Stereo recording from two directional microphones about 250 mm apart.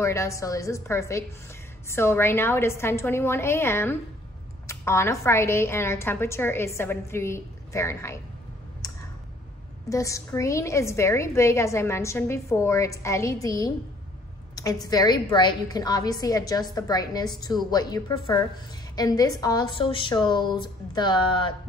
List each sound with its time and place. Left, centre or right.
0.0 s a woman's voice: centre
8.8 s tick: centre
9.8 s a woman's voice: centre